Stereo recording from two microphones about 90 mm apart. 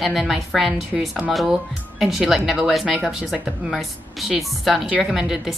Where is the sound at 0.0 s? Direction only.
Centre (ahead or behind).